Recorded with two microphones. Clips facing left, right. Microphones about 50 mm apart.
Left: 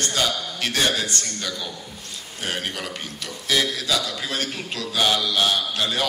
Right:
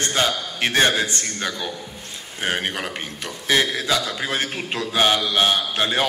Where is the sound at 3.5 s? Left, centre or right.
Right.